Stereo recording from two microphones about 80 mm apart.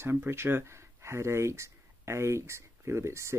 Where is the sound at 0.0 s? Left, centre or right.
Right.